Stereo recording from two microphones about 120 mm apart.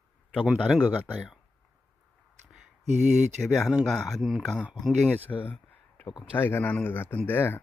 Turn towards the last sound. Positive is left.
turn(degrees=20)  # may be behind; listen again after turning